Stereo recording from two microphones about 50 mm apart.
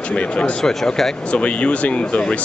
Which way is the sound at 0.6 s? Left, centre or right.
Centre.